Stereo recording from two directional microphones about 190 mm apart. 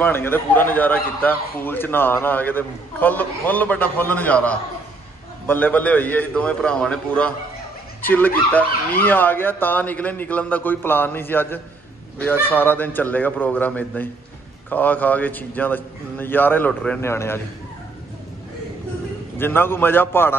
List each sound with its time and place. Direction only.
0.0 s a man's voice: 10° left (ahead or behind)
19.3 s a man's voice: 10° left (ahead or behind)